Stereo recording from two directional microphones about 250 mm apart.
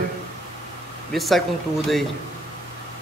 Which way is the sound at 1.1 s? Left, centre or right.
Centre.